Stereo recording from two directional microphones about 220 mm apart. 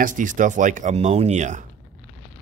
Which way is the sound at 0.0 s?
35° right (ahead or behind).